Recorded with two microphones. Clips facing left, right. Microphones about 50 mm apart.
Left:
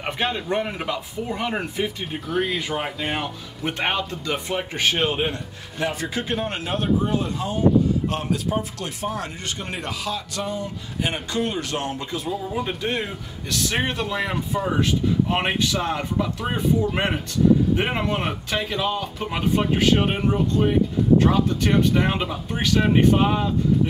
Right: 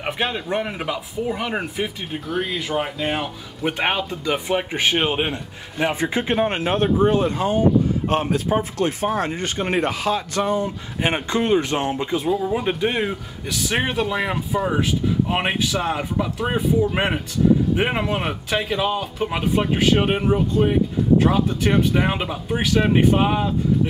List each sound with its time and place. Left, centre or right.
0.0 s speech: centre
3.7 s speech: centre